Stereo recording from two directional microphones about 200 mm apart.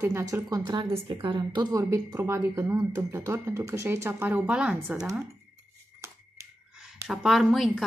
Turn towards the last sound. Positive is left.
turn(degrees=0)  # may be behind; listen again after turning